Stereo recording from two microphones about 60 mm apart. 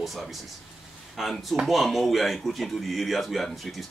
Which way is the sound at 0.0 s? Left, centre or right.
Centre.